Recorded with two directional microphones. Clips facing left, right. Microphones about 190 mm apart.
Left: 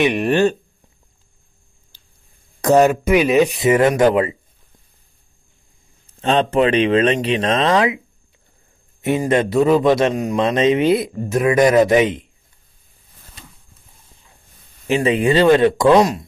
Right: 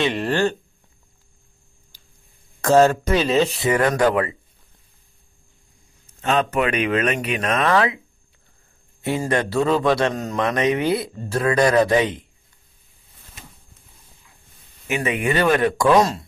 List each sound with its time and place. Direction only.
0.0 s speech: 20° left (ahead or behind)
2.6 s speech: 15° left (ahead or behind)
6.2 s speech: 30° left (ahead or behind)
9.0 s speech: 20° left (ahead or behind)
14.9 s speech: 30° left (ahead or behind); by 16.3 s 15° left (ahead or behind)